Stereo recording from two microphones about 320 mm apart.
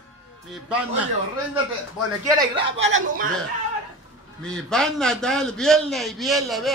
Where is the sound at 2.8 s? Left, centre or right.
Right.